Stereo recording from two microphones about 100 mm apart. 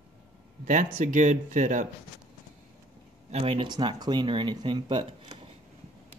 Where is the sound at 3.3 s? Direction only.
70° right (ahead or behind).